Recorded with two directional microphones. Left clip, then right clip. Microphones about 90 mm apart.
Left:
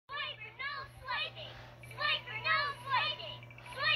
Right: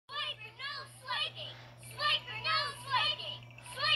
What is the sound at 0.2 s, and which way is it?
Children playing, 25° left (ahead or behind).